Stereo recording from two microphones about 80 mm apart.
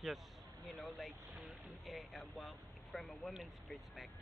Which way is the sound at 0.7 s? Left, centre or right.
Centre.